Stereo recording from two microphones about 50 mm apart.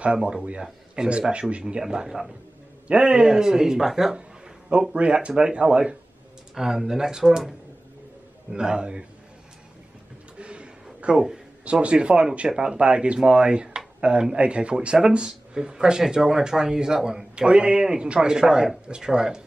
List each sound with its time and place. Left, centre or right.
0.0 s speech: centre
2.9 s speech: centre
4.9 s speech: right
10.4 s a sound: right
11.6 s speech: right